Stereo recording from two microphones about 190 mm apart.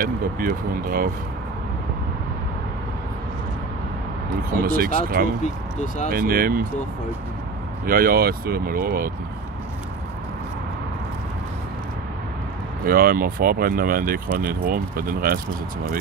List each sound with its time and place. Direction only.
0.0 s speech: 50° right (ahead or behind)
4.6 s speech: 50° right (ahead or behind)
7.8 s speech: 50° right (ahead or behind)
12.8 s speech: 50° right (ahead or behind)